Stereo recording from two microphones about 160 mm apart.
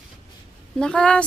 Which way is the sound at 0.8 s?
5° left (ahead or behind).